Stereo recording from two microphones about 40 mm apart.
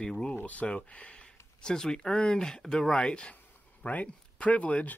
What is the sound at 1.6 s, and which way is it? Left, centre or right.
Speech, centre.